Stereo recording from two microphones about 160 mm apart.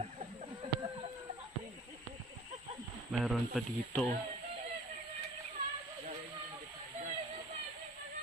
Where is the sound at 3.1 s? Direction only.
Centre (ahead or behind).